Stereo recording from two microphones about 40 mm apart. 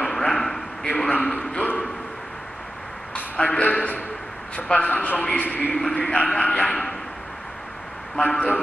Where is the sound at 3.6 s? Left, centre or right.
Left.